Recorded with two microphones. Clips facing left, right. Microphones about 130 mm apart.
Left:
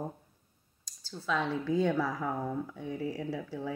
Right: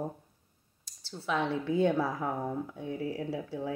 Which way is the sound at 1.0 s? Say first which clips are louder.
Right 1 dB; 25° right (ahead or behind).